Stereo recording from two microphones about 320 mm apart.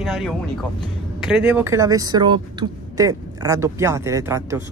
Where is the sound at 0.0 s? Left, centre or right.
Centre.